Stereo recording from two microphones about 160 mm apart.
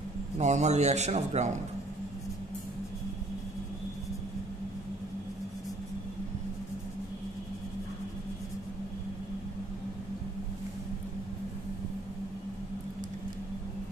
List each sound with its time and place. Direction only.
0.4 s a man's voice: 45° right (ahead or behind)